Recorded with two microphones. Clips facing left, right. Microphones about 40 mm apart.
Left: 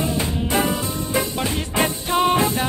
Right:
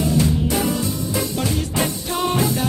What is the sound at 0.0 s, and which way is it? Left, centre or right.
Music, left.